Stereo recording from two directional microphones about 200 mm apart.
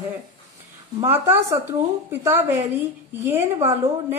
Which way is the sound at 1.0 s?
10° right (ahead or behind).